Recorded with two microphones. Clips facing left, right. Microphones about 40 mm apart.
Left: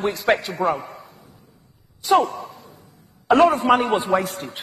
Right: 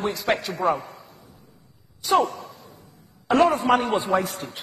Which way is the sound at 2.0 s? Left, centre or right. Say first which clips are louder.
Left 3 dB; left.